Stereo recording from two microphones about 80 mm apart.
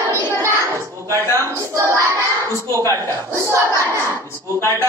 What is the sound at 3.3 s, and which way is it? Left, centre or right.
Speech, right.